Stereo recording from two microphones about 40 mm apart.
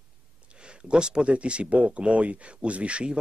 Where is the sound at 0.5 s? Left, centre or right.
Right.